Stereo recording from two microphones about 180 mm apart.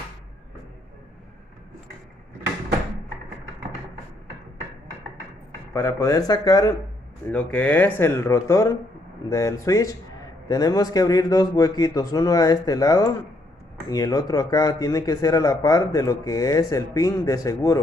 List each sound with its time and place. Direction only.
5.7 s speech: 15° left (ahead or behind)
7.2 s speech: 5° left (ahead or behind)